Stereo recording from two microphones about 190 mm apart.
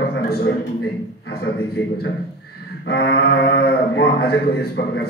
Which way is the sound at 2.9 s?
60° left (ahead or behind).